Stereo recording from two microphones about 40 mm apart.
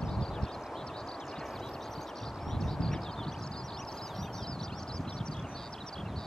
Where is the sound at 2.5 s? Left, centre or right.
Centre.